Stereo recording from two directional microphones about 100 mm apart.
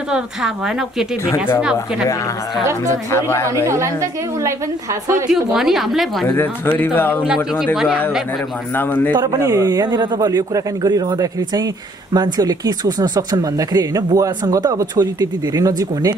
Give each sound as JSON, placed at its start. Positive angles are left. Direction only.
{"t": 0.1, "sound": "a woman's voice", "side_deg": -5}
{"t": 3.1, "sound": "speech", "side_deg": 25}
{"t": 3.6, "sound": "a woman's voice", "side_deg": -30}
{"t": 5.3, "sound": "a woman's voice", "side_deg": -5}
{"t": 6.2, "sound": "speech", "side_deg": 20}
{"t": 7.2, "sound": "a woman's voice", "side_deg": -5}
{"t": 8.7, "sound": "speech", "side_deg": 20}
{"t": 9.1, "sound": "a man's voice", "side_deg": -40}